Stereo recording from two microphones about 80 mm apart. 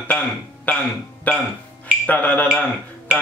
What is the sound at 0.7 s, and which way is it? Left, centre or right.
Speech, centre.